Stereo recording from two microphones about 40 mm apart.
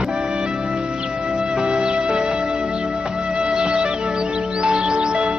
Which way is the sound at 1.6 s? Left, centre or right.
Right.